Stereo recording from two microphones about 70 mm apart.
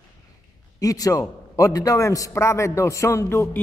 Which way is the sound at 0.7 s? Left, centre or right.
Left.